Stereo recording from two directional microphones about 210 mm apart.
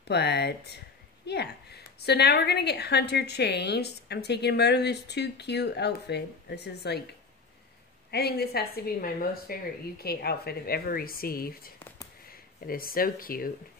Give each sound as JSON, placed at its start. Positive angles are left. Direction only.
{"t": 0.1, "sound": "a woman's voice", "side_deg": 50}
{"t": 8.1, "sound": "a woman's voice", "side_deg": 50}